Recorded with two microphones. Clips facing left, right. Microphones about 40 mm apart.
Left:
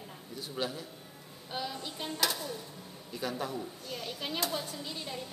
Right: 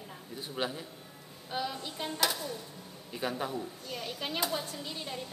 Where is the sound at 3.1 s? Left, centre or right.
Right.